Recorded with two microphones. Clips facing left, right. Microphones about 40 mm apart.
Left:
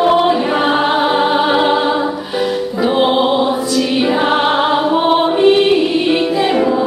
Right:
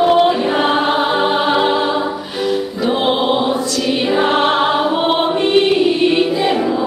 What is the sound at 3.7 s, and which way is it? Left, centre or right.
Music, centre.